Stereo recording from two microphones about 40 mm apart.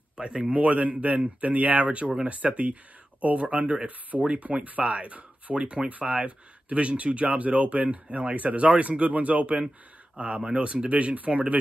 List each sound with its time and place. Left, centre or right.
0.5 s speech: right